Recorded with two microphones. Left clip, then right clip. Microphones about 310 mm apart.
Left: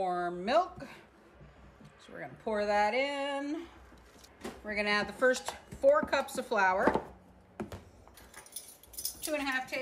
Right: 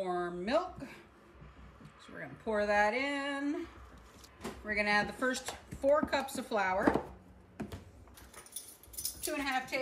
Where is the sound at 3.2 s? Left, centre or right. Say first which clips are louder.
Left 1 dB; centre.